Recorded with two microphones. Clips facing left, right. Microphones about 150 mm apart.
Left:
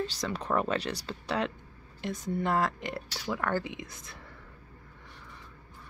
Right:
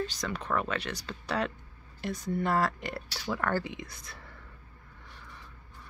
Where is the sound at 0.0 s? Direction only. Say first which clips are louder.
Left 1 dB; 30° left (ahead or behind).